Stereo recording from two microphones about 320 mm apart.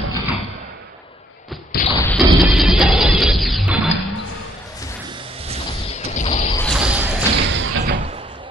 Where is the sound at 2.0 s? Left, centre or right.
Centre.